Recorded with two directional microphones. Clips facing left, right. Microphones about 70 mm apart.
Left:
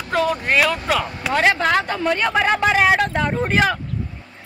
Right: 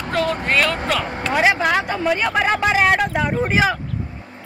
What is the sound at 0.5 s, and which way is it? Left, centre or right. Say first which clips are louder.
Speech: left 1 dB; centre.